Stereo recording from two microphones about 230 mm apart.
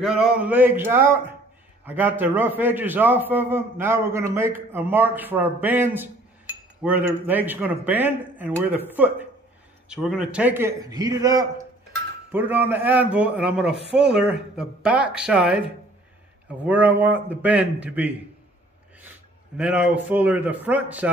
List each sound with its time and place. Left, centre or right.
0.0 s speech: centre
16.6 s speech: centre